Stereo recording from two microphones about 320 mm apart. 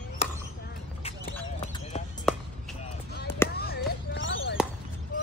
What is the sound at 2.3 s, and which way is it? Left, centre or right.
Chop, centre.